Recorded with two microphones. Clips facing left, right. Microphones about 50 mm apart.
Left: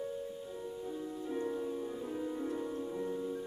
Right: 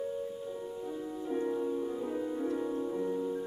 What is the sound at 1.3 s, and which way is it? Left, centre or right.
Music, centre.